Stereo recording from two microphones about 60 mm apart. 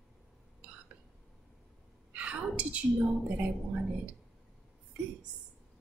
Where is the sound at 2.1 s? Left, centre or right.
Right.